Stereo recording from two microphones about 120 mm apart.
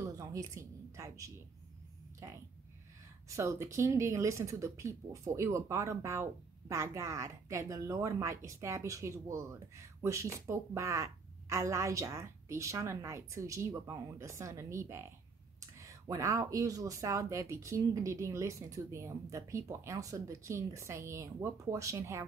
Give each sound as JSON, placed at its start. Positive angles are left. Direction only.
{"t": 0.2, "sound": "speech", "side_deg": -30}